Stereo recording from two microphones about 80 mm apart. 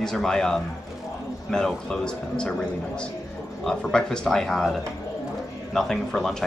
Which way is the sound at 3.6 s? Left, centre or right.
Centre.